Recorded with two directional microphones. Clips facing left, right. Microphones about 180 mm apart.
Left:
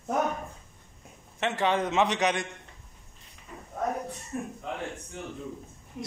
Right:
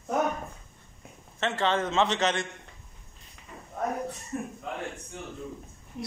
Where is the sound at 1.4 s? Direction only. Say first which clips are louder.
Even; 15° left (ahead or behind).